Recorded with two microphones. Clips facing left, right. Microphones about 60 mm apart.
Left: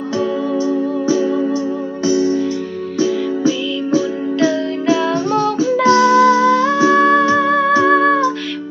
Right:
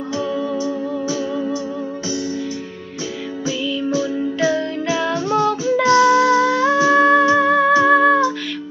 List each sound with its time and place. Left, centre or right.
0.2 s music: left
4.4 s music: centre